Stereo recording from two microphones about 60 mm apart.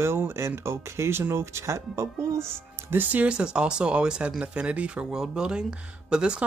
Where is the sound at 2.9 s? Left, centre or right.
Right.